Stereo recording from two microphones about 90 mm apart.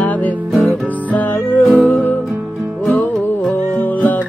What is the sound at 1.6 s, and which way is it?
Music, centre (ahead or behind).